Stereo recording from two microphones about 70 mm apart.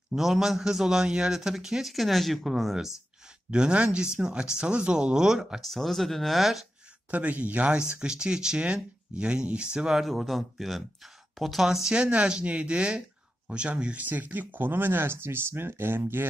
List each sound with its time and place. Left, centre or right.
0.1 s a man's voice: centre
3.4 s speech: centre
5.6 s a man's voice: centre
7.1 s speech: right